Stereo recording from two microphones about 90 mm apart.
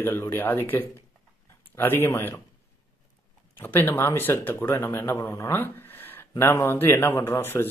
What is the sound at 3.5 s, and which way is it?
Speech, 25° left (ahead or behind).